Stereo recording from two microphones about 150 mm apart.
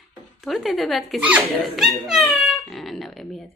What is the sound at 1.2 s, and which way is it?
Dog, 5° right (ahead or behind).